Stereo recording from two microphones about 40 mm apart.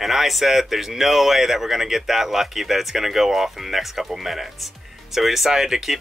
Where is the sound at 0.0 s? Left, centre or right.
Centre.